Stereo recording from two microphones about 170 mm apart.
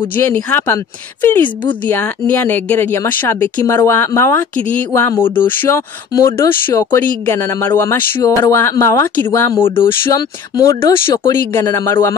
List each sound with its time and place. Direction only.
0.1 s speech: 15° left (ahead or behind)
9.6 s speech: 30° left (ahead or behind)
10.0 s speech: 20° left (ahead or behind)